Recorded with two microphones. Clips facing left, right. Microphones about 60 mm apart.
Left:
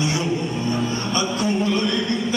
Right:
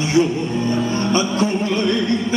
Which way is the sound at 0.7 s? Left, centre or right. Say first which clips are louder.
Right 5 dB; right.